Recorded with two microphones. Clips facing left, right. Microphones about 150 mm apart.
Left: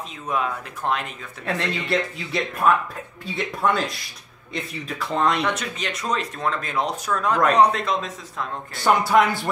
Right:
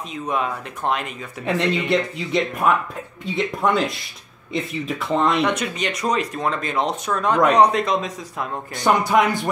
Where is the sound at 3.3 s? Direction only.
20° right (ahead or behind).